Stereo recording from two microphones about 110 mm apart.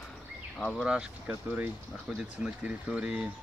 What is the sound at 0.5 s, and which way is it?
Speech, 5° left (ahead or behind).